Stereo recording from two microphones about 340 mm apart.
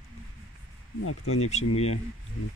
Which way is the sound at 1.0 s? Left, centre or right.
Left.